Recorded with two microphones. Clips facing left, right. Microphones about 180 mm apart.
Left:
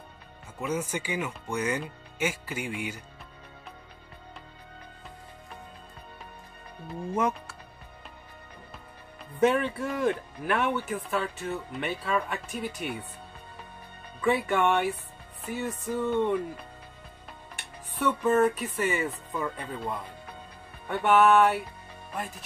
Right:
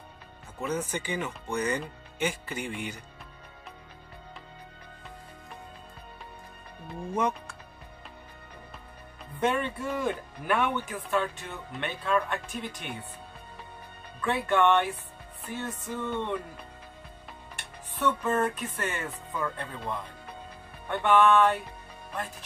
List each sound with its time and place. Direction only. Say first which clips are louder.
0.6 s speech: left 1 dB; 10° left (ahead or behind)
7.2 s speech: left 1 dB; 5° left (ahead or behind)
9.4 s speech: left 4 dB; centre (ahead or behind)
14.2 s speech: even; 10° left (ahead or behind)
18.0 s speech: left 4 dB; 5° left (ahead or behind)